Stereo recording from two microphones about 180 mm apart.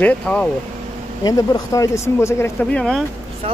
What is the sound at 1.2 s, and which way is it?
Speech, 20° left (ahead or behind).